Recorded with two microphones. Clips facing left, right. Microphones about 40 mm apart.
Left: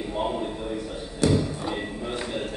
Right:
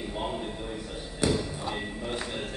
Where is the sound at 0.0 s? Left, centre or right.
Centre.